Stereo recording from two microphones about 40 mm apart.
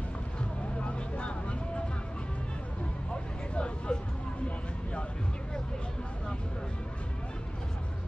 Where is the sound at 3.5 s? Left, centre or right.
Left.